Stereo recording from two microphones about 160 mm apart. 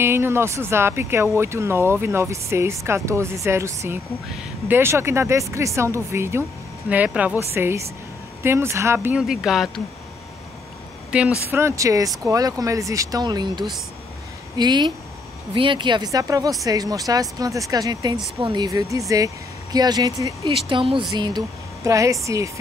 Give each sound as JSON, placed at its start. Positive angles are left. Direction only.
{"t": 0.0, "sound": "speech", "side_deg": -15}
{"t": 9.2, "sound": "speech", "side_deg": -5}
{"t": 11.1, "sound": "speech", "side_deg": -10}
{"t": 20.6, "sound": "speech", "side_deg": -30}